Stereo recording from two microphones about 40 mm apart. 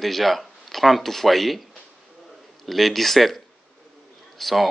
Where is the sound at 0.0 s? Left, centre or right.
Centre.